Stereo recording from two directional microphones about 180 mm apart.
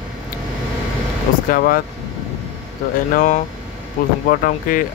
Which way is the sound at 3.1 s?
45° left (ahead or behind).